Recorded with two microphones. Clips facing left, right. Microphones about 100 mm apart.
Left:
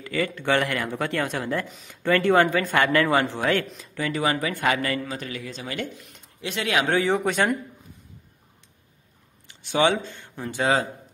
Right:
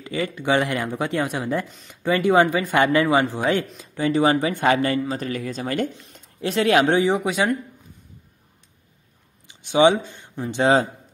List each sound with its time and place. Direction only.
0.0 s speech: 20° right (ahead or behind); by 5.9 s 45° right (ahead or behind)
5.9 s a man's voice: 35° right (ahead or behind)
6.9 s speech: 20° right (ahead or behind)
7.2 s speech: 5° right (ahead or behind)
9.5 s speech: 15° right (ahead or behind)
10.6 s speech: 25° right (ahead or behind)